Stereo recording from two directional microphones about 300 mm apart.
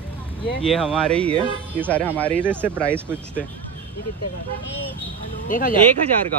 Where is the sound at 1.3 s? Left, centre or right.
Centre.